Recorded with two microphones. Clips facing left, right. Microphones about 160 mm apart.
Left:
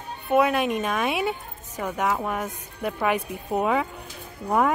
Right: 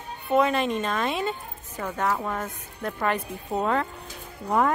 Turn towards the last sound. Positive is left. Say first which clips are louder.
# left 1 dB
turn(degrees=5)  # may be behind; listen again after turning